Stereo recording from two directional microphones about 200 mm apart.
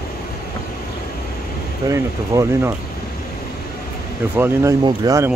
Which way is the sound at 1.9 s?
15° right (ahead or behind).